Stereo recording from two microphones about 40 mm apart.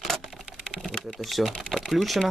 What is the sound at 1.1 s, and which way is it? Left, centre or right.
Speech, centre.